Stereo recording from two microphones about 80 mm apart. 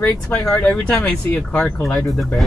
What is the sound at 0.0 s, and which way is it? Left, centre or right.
Speech, left.